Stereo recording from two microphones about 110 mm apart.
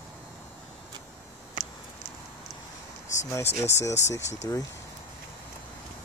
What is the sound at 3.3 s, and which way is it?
Speech, 25° left (ahead or behind).